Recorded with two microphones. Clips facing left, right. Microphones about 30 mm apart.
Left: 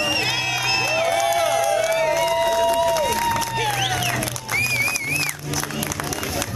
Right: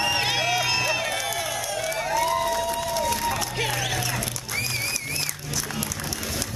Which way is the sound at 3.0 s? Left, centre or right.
Left.